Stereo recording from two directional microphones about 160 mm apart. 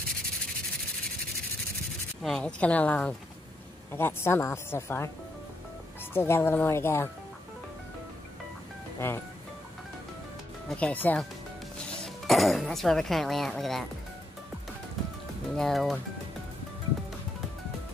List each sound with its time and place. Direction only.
2.2 s speech: 5° left (ahead or behind)
6.1 s speech: 15° left (ahead or behind)
9.0 s speech: 15° left (ahead or behind)
10.7 s speech: 10° left (ahead or behind)
15.5 s speech: centre (ahead or behind)